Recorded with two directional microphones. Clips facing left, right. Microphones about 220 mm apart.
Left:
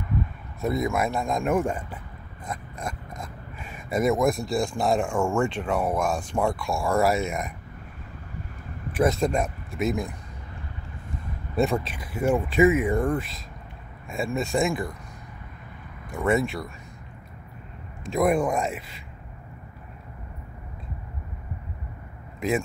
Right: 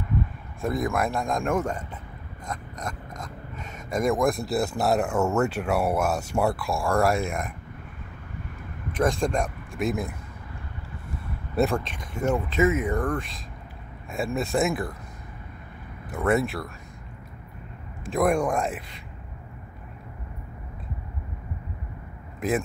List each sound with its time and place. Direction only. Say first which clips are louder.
0.6 s speech: left 1 dB; centre (ahead or behind)
3.2 s speech: right 1 dB; 5° left (ahead or behind)
8.9 s speech: left 2 dB; 5° left (ahead or behind)
11.5 s speech: even; centre (ahead or behind)
16.1 s speech: even; centre (ahead or behind)
18.0 s speech: left 1 dB; centre (ahead or behind)